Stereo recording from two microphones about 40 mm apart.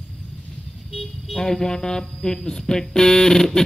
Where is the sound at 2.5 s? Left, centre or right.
Centre.